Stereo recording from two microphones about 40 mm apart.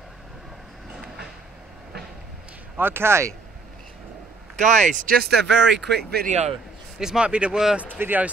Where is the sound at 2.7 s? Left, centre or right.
Right.